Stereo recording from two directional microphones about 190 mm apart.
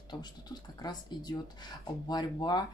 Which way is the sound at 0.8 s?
20° left (ahead or behind).